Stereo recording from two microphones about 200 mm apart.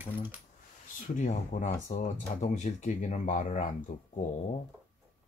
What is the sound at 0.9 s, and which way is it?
Speech, 40° left (ahead or behind).